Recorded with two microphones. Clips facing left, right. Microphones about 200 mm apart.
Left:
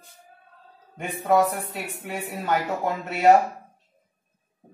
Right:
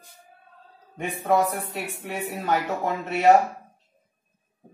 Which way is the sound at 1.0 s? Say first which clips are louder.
Left 1 dB; centre (ahead or behind).